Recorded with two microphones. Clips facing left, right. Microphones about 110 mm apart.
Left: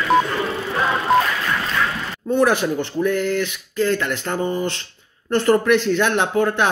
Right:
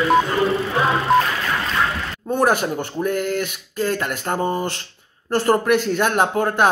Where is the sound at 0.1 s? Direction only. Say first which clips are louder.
Left 2 dB; centre (ahead or behind).